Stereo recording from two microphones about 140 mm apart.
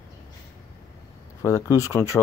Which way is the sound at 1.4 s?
20° left (ahead or behind).